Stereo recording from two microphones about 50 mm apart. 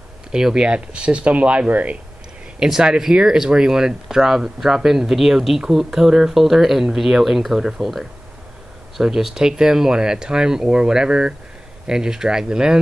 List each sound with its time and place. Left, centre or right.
0.3 s speech: centre; by 2.0 s right
2.6 s speech: centre